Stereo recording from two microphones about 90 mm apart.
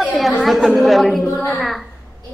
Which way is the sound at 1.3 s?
15° left (ahead or behind).